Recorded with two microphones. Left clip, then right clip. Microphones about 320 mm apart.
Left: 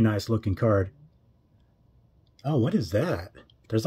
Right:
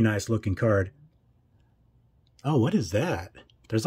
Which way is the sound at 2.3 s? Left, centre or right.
Right.